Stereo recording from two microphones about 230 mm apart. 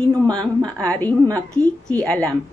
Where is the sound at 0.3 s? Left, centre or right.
Centre.